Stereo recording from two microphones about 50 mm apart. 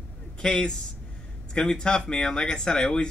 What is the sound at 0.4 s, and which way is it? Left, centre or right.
Speech, centre.